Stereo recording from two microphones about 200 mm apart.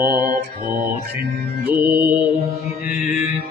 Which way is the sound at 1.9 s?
10° right (ahead or behind).